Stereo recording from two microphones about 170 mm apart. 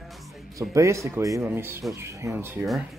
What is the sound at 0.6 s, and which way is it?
Speech, 15° right (ahead or behind).